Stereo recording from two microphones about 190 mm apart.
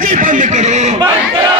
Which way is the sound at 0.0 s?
45° right (ahead or behind).